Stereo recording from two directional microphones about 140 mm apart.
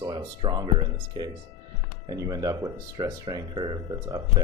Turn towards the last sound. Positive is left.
turn(degrees=-30)  # may be behind; listen again after turning